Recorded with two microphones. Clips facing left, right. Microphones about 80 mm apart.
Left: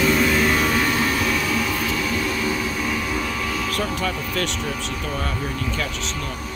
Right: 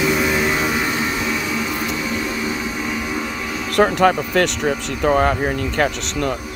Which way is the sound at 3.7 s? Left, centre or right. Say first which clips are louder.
Right 10 dB; right.